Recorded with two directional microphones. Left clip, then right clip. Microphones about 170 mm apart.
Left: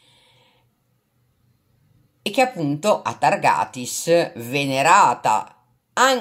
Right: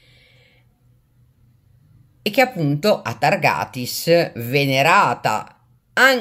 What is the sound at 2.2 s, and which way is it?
Speech, 10° right (ahead or behind).